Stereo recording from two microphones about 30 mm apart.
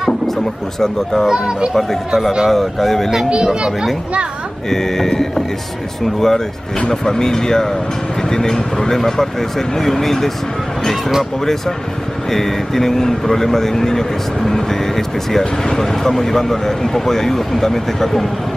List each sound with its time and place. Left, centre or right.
1.3 s speech: right
1.7 s a man's voice: centre
3.3 s speech: right
4.6 s speech: centre
12.3 s speech: centre